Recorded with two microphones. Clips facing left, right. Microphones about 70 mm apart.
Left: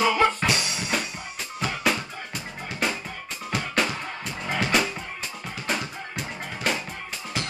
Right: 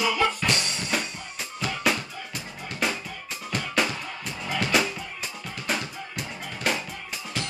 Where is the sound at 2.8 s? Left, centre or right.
Centre.